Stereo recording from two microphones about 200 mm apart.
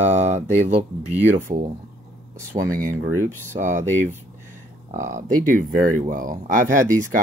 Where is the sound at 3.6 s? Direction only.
40° right (ahead or behind).